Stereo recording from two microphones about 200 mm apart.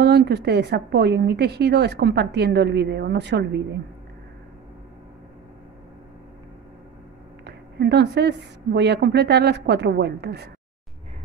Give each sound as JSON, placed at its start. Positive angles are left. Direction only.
{"t": 0.0, "sound": "a woman's voice", "side_deg": -55}
{"t": 7.4, "sound": "a woman's voice", "side_deg": -55}